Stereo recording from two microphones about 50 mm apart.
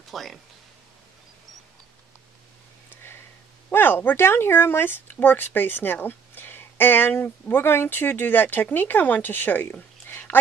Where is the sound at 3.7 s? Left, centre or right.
Left.